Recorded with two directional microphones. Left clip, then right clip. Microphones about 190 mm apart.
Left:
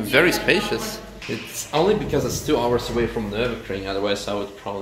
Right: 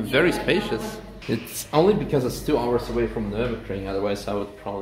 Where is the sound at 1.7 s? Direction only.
55° right (ahead or behind).